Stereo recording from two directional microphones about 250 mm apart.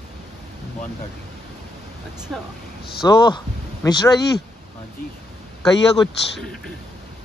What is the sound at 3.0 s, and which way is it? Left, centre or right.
A man's voice, centre.